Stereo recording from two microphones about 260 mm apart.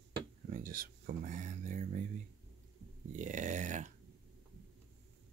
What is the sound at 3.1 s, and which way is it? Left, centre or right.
Speech, right.